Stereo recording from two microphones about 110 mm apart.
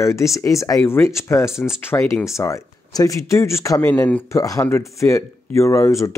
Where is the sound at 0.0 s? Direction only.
25° left (ahead or behind).